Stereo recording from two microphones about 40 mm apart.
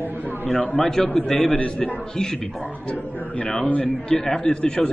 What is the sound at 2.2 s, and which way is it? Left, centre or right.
Speech, centre.